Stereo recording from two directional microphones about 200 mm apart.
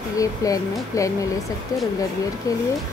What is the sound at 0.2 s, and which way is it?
Speech, 15° left (ahead or behind).